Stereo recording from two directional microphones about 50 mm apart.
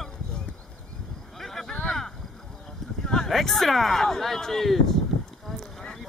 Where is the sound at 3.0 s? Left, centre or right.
Centre.